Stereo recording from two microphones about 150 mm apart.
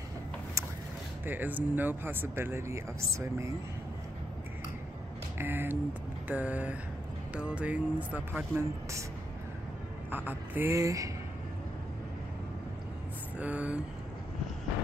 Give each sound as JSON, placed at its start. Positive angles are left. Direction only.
{"t": 1.2, "sound": "speech", "side_deg": -10}
{"t": 5.4, "sound": "speech", "side_deg": -15}
{"t": 10.1, "sound": "speech", "side_deg": -10}
{"t": 13.4, "sound": "speech", "side_deg": -10}